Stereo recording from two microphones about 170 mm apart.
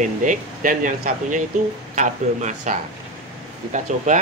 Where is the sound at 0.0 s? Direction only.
50° right (ahead or behind).